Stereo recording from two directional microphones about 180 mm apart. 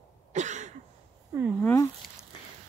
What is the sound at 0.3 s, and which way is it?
Cough, 40° right (ahead or behind).